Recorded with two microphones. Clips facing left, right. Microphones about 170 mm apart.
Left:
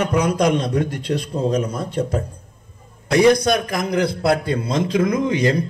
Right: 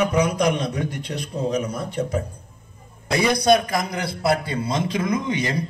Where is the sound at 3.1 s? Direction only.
60° left (ahead or behind).